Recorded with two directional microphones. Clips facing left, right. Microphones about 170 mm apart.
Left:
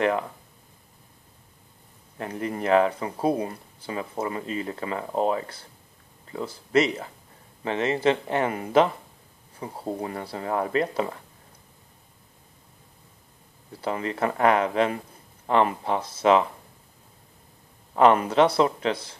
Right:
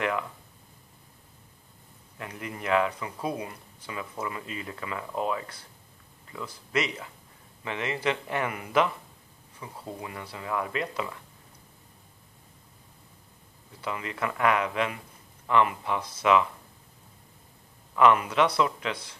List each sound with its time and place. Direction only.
2.1 s speech: 35° left (ahead or behind)
13.7 s speech: 35° left (ahead or behind)
17.9 s speech: 35° left (ahead or behind)